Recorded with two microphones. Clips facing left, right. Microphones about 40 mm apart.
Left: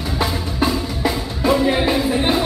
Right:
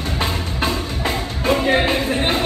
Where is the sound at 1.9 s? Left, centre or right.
Right.